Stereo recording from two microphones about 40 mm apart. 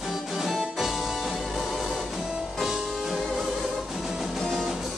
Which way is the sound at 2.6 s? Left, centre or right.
Centre.